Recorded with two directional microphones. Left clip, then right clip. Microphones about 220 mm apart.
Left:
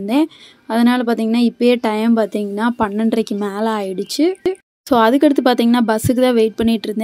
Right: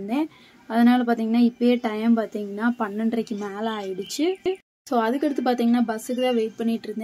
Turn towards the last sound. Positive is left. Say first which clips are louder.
# left 9 dB
turn(degrees=40)  # may be behind; listen again after turning